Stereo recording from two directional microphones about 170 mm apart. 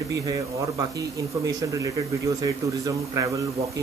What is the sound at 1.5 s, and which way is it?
Speech, 20° right (ahead or behind).